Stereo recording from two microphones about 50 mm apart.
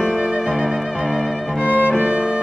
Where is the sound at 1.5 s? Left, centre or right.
Right.